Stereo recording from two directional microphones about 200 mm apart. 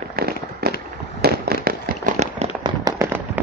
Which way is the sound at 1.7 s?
45° right (ahead or behind).